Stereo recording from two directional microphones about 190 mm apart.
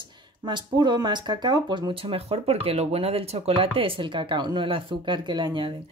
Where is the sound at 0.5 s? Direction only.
25° right (ahead or behind).